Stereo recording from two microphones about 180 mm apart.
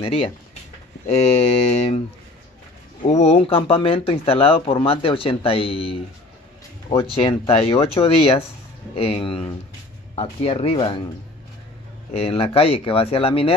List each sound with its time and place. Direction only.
0.0 s speech: 30° left (ahead or behind)
3.0 s speech: 40° left (ahead or behind)
12.1 s speech: 30° left (ahead or behind)